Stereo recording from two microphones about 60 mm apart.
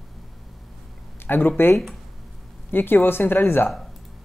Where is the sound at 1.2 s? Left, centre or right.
Left.